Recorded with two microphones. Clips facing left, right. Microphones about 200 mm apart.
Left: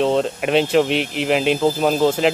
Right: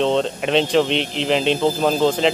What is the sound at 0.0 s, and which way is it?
Speech, 5° left (ahead or behind).